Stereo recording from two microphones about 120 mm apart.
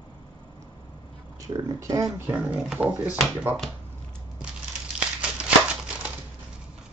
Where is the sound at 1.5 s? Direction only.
30° right (ahead or behind).